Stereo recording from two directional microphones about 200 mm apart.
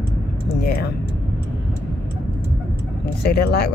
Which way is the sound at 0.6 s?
50° left (ahead or behind).